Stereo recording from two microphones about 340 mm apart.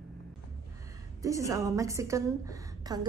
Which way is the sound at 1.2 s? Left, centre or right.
Centre.